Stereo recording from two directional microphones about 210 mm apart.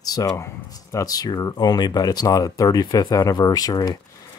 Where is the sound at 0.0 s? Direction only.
20° left (ahead or behind).